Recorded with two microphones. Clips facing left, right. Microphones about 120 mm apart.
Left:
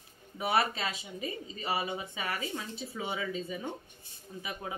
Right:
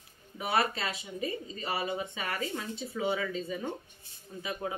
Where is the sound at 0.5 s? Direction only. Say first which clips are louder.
Even; 20° left (ahead or behind).